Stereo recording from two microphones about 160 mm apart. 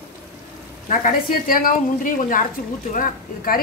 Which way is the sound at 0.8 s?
60° left (ahead or behind).